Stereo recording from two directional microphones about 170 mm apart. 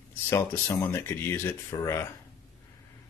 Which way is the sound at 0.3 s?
15° left (ahead or behind).